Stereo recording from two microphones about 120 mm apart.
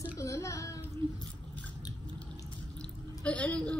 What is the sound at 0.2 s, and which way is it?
Child singing, 25° left (ahead or behind).